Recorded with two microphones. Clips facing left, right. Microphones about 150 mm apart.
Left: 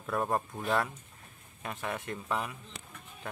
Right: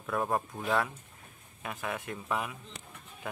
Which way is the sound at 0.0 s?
Centre (ahead or behind).